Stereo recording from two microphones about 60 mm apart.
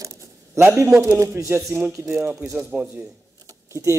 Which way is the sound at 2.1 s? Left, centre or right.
Right.